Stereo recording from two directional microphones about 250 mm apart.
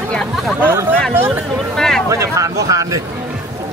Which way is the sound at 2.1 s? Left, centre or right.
Centre.